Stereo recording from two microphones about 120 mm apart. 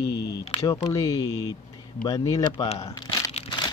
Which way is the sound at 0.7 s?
30° left (ahead or behind).